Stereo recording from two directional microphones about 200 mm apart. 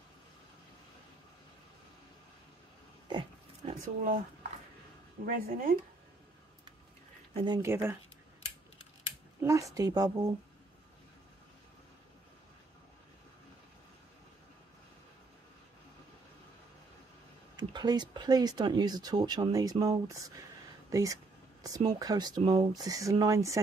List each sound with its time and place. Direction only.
3.1 s pig: 25° right (ahead or behind)
5.2 s speech: 45° right (ahead or behind)
7.3 s a woman's voice: 20° right (ahead or behind)
9.4 s a woman's voice: 15° right (ahead or behind)
17.6 s a woman's voice: 20° right (ahead or behind)